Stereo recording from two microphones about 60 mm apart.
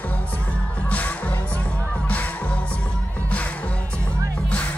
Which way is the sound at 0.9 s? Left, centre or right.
Left.